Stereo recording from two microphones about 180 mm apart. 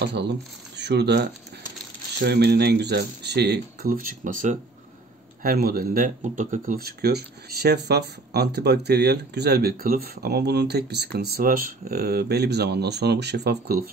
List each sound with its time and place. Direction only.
0.0 s speech: 70° right (ahead or behind); by 4.6 s 45° right (ahead or behind)
5.4 s speech: 55° right (ahead or behind)